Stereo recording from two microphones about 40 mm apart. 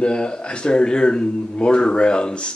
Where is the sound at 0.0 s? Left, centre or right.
Left.